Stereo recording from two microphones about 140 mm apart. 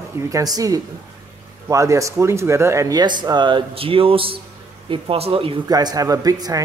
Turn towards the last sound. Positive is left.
turn(degrees=-25)  # may be behind; listen again after turning